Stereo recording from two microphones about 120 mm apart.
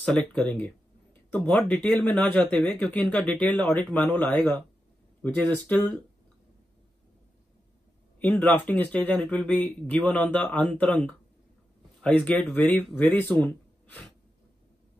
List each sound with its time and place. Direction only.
0.0 s speech: 10° left (ahead or behind)
8.2 s speech: 15° left (ahead or behind)